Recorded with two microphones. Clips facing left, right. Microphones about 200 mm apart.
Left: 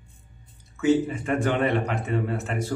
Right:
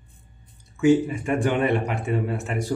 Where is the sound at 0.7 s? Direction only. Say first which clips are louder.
Right 3 dB; 15° right (ahead or behind).